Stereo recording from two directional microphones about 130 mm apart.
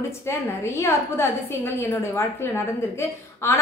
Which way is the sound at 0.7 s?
20° left (ahead or behind).